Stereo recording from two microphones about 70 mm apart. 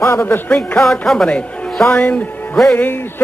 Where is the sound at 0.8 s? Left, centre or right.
Centre.